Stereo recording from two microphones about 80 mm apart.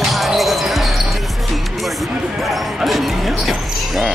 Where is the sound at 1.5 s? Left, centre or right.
Centre.